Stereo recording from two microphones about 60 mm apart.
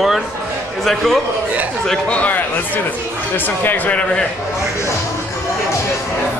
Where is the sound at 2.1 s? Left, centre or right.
Left.